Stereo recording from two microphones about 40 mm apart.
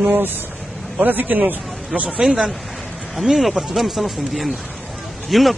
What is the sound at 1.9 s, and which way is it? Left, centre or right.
Speech, centre.